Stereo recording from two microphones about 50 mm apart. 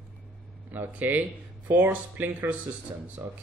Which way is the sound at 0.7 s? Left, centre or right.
Right.